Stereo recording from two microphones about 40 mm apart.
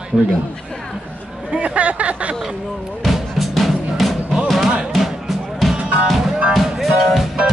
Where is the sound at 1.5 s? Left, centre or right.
Right.